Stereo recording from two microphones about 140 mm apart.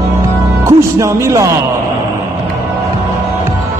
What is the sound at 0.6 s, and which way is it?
Music, 20° right (ahead or behind).